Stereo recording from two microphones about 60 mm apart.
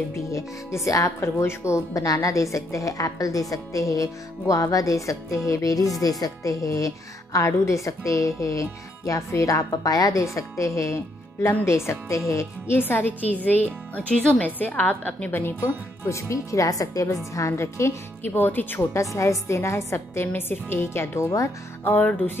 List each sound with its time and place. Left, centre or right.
0.1 s a woman's voice: left
0.8 s speech: left
1.4 s a woman's voice: left
12.7 s a woman's voice: left
16.1 s a woman's voice: left
18.2 s a woman's voice: left
18.9 s a woman's voice: left
20.3 s a woman's voice: left
21.8 s speech: left